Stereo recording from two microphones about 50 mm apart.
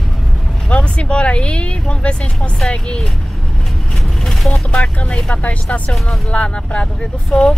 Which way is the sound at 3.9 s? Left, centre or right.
Centre.